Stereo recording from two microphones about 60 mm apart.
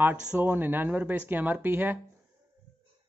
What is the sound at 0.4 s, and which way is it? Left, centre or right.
Speech, right.